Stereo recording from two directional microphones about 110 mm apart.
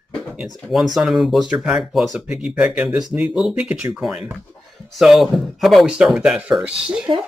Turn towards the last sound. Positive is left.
turn(degrees=-50)  # may be behind; listen again after turning